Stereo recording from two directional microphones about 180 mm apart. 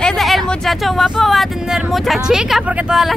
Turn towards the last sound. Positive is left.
turn(degrees=0)  # may be behind; listen again after turning